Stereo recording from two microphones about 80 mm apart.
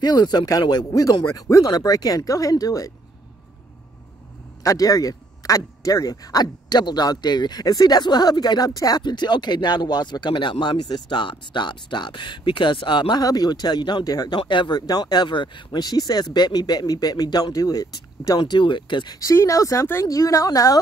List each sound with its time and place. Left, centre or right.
0.0 s speech: left
4.6 s speech: left
13.2 s speech: left
14.5 s speech: left
18.4 s speech: left
19.1 s speech: left